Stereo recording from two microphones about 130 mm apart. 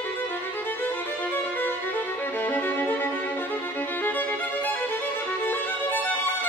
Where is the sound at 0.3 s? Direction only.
15° left (ahead or behind).